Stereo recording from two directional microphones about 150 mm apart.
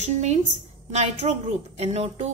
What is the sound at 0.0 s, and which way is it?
A woman's voice, 50° right (ahead or behind).